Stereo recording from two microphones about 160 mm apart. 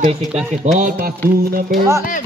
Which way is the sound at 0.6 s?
50° right (ahead or behind).